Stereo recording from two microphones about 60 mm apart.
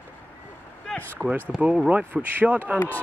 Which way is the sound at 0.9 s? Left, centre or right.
Left.